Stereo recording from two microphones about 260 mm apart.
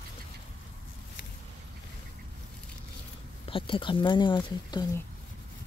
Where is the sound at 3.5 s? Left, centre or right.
Centre.